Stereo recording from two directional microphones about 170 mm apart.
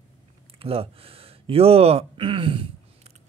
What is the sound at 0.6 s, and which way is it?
Speech, 35° right (ahead or behind).